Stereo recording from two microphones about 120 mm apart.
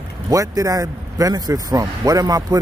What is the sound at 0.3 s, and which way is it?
Speech, 30° right (ahead or behind).